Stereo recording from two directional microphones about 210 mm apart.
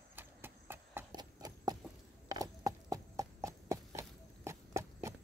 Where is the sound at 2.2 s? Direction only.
15° right (ahead or behind).